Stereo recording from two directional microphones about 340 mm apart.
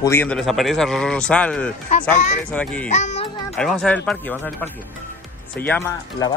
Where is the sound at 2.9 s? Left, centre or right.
Centre.